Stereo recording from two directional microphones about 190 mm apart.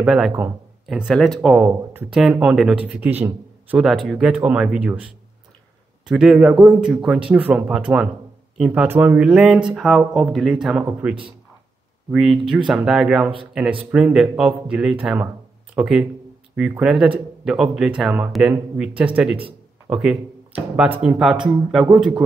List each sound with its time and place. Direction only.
0.0 s speech: centre (ahead or behind)
6.0 s speech: 5° right (ahead or behind)